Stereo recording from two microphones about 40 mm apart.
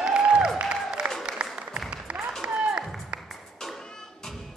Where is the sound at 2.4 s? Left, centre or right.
Centre.